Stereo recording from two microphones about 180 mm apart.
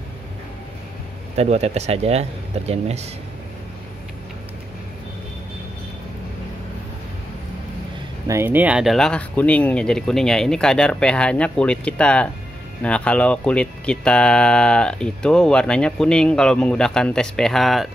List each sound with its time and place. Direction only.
1.3 s speech: 35° right (ahead or behind)
8.3 s speech: 10° right (ahead or behind)